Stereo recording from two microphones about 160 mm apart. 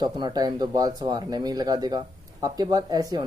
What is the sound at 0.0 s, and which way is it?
Speech, 25° right (ahead or behind).